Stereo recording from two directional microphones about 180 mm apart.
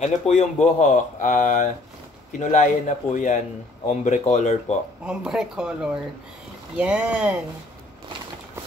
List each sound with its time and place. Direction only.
0.0 s speech: 40° left (ahead or behind)
5.0 s speech: 5° right (ahead or behind)